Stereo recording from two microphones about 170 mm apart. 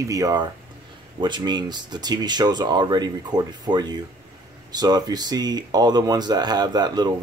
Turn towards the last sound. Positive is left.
turn(degrees=-25)  # may be behind; listen again after turning